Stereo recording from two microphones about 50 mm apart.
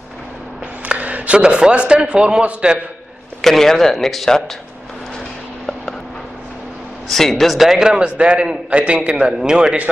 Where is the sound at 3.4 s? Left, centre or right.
Centre.